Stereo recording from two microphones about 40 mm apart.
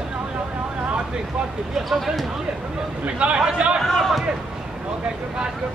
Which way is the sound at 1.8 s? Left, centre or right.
Centre.